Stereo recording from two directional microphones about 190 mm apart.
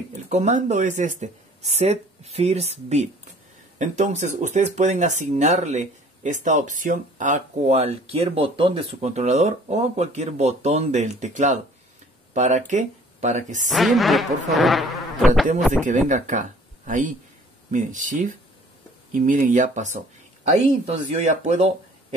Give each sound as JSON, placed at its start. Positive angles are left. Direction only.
{"t": 0.3, "sound": "speech", "side_deg": -40}
{"t": 13.7, "sound": "insect", "side_deg": 0}
{"t": 15.8, "sound": "speech", "side_deg": -40}